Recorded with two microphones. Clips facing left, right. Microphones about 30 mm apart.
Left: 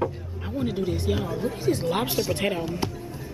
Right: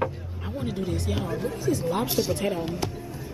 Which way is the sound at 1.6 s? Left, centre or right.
Left.